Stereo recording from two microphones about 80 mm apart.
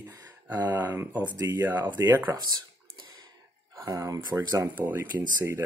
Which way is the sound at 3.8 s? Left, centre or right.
Right.